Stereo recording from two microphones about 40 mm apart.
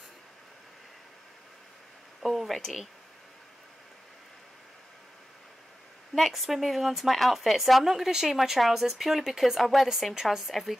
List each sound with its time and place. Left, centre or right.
2.2 s a woman's voice: centre
6.1 s a woman's voice: centre